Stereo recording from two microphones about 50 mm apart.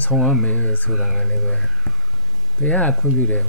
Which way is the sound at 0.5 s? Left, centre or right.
Left.